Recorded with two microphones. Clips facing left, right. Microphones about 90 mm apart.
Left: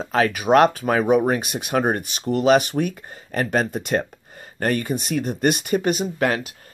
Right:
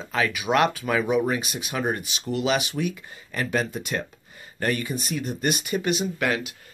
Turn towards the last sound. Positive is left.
turn(degrees=40)  # may be behind; listen again after turning